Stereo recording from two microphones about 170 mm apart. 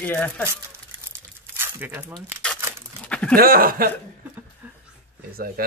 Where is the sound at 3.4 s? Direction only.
60° right (ahead or behind).